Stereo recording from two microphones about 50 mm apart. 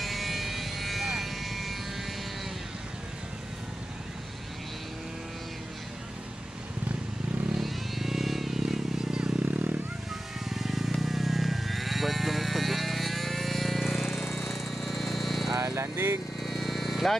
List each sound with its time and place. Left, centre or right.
0.0 s vehicle: centre
7.5 s vehicle: centre
9.4 s vehicle: right
10.5 s sheep: centre
14.3 s a sound: centre
15.5 s a sound: right
16.4 s vehicle: centre